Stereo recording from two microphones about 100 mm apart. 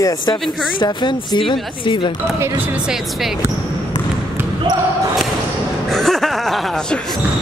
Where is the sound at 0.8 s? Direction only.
50° left (ahead or behind).